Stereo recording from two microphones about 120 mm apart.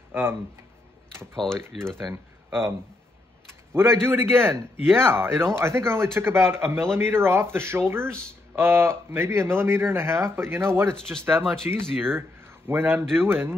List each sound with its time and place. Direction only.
0.1 s speech: 15° right (ahead or behind)
1.3 s speech: 5° left (ahead or behind)
3.7 s speech: 20° right (ahead or behind)
11.1 s speech: 5° left (ahead or behind)
12.0 s speech: 20° right (ahead or behind)